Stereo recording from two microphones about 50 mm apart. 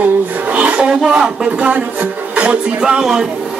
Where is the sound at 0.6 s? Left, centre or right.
Right.